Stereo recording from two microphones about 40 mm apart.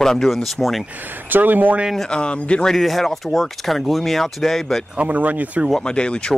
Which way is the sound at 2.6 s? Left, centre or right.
Centre.